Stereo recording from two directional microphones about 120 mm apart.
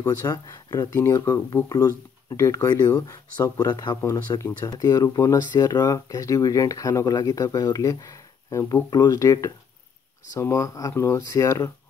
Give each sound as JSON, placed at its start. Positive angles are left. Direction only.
{"t": 0.0, "sound": "speech", "side_deg": 30}
{"t": 4.0, "sound": "speech", "side_deg": 20}